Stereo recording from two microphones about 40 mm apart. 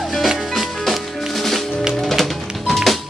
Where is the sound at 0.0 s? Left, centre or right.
Centre.